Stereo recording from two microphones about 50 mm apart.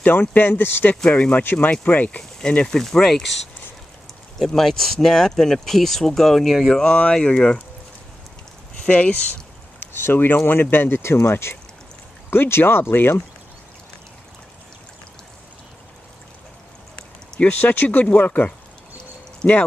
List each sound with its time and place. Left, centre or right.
0.0 s speech: left
1.1 s speech: left
1.4 s speech: left
2.0 s speech: centre
4.5 s speech: centre
7.1 s speech: centre
8.8 s speech: left
9.8 s speech: left
17.5 s speech: left